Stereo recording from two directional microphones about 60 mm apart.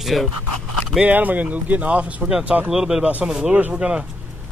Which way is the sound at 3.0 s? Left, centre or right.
Right.